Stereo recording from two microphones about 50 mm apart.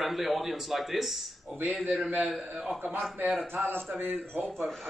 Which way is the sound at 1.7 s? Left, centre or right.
Right.